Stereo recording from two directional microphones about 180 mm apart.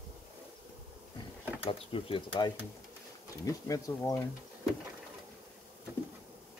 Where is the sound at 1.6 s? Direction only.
30° left (ahead or behind).